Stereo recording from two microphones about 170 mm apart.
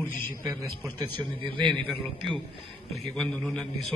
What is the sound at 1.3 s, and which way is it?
Speech, 30° right (ahead or behind).